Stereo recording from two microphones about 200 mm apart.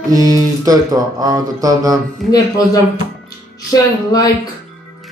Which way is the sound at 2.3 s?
15° left (ahead or behind).